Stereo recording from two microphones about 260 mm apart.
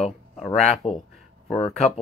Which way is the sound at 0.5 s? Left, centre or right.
Left.